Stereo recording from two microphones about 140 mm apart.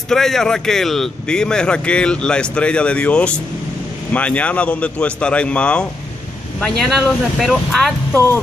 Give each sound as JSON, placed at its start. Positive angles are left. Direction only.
{"t": 0.1, "sound": "speech", "side_deg": 5}
{"t": 8.1, "sound": "speech", "side_deg": 15}